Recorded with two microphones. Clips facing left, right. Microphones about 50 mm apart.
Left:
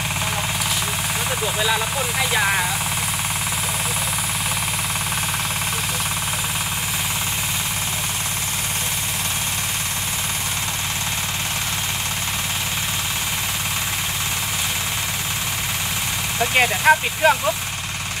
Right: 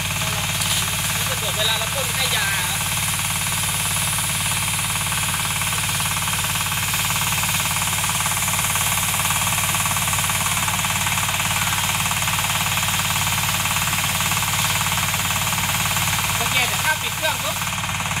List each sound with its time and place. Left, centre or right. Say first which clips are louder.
16.5 s speech: left 9 dB; left